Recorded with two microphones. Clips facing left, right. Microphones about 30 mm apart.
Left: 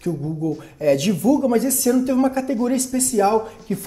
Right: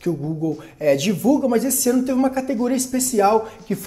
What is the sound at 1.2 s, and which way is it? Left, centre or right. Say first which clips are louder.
Speech: even; centre.